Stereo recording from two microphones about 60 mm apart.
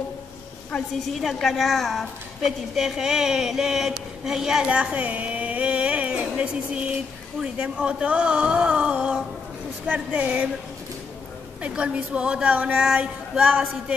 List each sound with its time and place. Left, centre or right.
1.2 s a woman's voice: centre
11.6 s speech: centre